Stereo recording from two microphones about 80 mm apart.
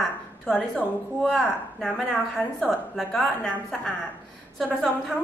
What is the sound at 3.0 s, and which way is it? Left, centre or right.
Speech, centre.